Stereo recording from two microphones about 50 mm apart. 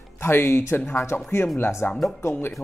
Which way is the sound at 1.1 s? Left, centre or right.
Left.